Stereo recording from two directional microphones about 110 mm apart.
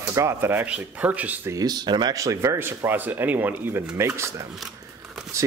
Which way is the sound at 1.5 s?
40° right (ahead or behind).